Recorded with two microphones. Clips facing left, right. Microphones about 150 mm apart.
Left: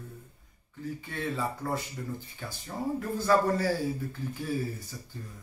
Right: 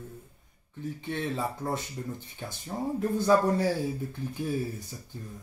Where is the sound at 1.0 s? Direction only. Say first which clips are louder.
Right 2 dB; 20° right (ahead or behind).